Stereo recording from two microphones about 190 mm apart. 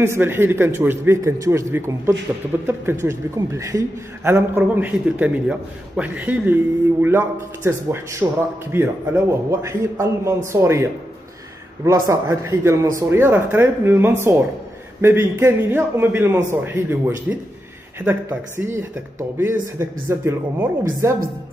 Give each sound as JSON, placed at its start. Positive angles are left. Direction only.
{"t": 0.0, "sound": "a man's voice", "side_deg": -10}